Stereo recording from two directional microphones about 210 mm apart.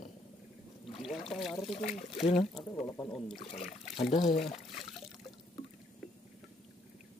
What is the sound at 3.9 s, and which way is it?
Speech, 30° left (ahead or behind).